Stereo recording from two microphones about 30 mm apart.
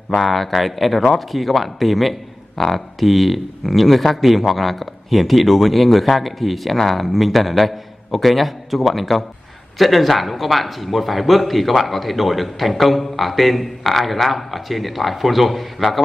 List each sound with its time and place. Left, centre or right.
0.2 s a man's voice: centre